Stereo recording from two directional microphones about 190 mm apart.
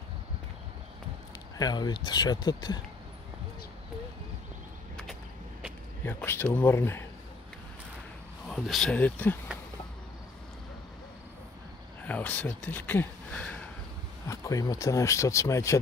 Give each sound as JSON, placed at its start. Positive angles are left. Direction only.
{"t": 1.6, "sound": "speech", "side_deg": 20}
{"t": 6.0, "sound": "speech", "side_deg": 10}
{"t": 8.5, "sound": "speech", "side_deg": 0}
{"t": 12.1, "sound": "speech", "side_deg": 10}